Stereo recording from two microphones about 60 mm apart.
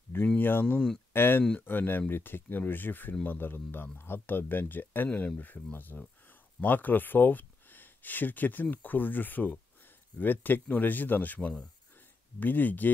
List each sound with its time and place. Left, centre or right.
0.4 s speech: left
0.7 s speech: centre
1.1 s speech: left